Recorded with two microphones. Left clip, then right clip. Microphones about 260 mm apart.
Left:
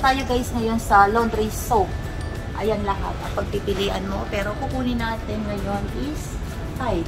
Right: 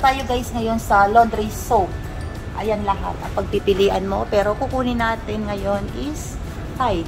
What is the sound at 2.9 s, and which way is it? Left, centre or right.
Speech, right.